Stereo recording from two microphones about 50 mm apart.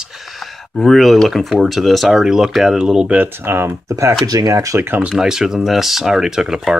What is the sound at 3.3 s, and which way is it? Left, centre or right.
Speech, right.